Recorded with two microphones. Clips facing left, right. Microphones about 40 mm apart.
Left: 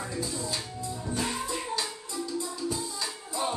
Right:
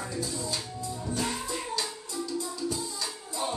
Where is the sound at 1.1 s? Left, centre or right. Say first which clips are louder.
Left 1 dB; centre.